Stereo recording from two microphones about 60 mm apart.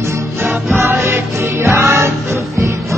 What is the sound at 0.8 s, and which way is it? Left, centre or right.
Music, right.